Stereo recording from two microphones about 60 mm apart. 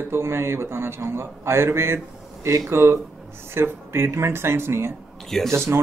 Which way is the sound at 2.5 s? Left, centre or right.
Right.